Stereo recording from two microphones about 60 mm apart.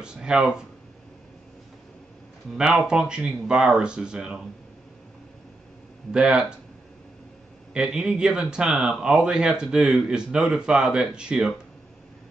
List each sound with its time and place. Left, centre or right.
0.0 s speech: centre
2.5 s speech: centre
6.1 s speech: centre
7.7 s speech: centre